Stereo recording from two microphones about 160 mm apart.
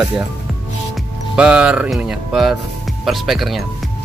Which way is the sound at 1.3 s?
5° right (ahead or behind).